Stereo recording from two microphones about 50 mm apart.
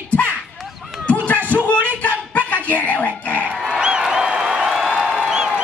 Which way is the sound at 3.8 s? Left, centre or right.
Centre.